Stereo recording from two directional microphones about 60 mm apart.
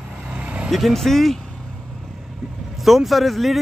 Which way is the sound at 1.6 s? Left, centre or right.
Centre.